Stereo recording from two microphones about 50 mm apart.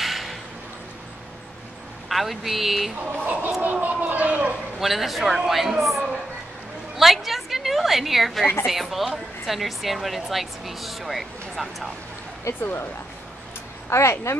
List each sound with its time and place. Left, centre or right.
0.0 s a sound: centre
2.0 s speech: centre
3.1 s speech: right
4.7 s speech: centre
7.0 s a sound: centre
8.6 s speech: centre
12.5 s speech: left
13.8 s speech: left